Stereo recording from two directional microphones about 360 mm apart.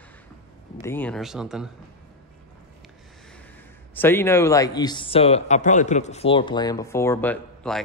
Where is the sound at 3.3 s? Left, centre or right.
Centre.